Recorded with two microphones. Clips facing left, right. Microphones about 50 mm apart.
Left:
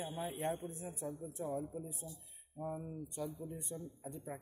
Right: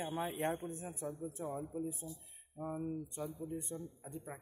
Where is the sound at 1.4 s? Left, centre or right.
Right.